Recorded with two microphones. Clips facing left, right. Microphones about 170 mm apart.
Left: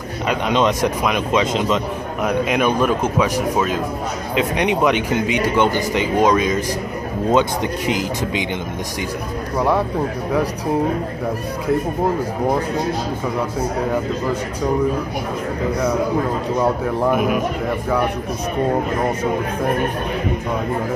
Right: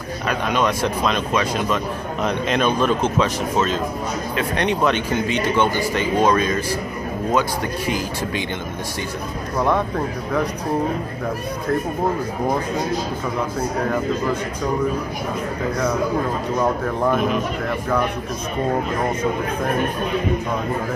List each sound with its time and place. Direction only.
0.3 s speech: 20° left (ahead or behind)
16.6 s speech: 10° left (ahead or behind)